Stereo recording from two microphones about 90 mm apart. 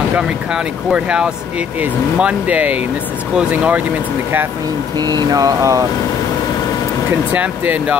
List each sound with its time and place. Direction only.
0.5 s speech: 10° right (ahead or behind)
4.9 s a sound: 50° right (ahead or behind)
7.1 s speech: 20° right (ahead or behind)